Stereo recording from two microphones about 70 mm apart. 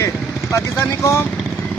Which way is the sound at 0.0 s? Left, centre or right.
Left.